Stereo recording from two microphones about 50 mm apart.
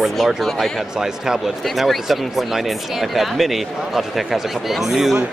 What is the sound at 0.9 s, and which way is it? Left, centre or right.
Speech, centre.